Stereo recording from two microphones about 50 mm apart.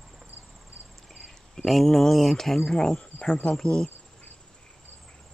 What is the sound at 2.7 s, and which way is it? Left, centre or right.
Insect, centre.